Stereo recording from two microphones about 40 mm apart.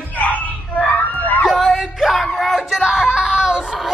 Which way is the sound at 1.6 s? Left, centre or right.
Centre.